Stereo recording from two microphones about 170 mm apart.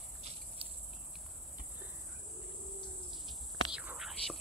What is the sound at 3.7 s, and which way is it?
Whispering, 5° right (ahead or behind).